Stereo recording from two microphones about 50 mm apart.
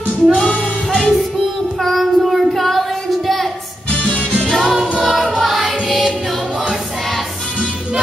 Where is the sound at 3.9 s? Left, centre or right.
Left.